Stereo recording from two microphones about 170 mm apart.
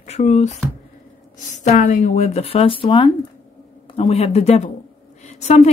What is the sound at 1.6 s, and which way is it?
A woman's voice, 50° left (ahead or behind).